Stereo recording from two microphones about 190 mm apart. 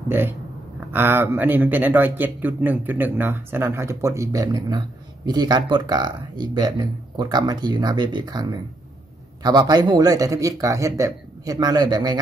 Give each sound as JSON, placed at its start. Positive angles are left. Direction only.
{"t": 0.9, "sound": "speech", "side_deg": -10}